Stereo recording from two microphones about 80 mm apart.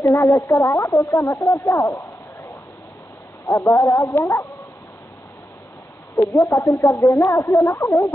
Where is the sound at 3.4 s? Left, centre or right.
Left.